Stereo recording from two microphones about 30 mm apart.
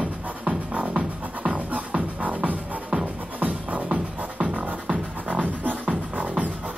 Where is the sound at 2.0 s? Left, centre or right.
Right.